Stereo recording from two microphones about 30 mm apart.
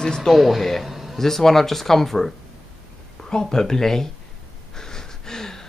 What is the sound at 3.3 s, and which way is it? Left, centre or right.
Speech, left.